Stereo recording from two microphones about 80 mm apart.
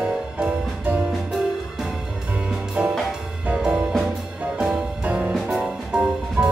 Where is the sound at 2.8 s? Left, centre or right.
Centre.